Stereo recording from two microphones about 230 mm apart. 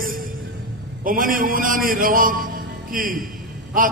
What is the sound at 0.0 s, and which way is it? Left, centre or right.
Music, right.